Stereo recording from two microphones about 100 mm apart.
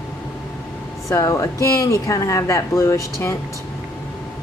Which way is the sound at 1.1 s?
35° left (ahead or behind).